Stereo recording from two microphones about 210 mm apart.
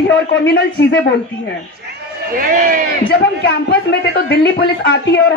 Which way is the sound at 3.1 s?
55° left (ahead or behind).